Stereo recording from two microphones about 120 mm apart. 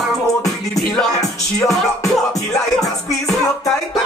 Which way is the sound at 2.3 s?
30° left (ahead or behind).